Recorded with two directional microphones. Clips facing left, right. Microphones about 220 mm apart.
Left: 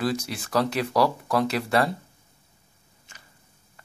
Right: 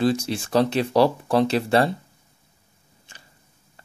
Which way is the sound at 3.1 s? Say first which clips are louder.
Right 2 dB; 30° right (ahead or behind).